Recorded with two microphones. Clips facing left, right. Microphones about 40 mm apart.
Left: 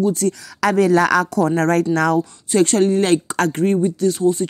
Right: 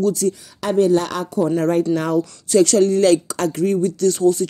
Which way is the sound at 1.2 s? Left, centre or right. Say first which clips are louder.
Left 1 dB; left.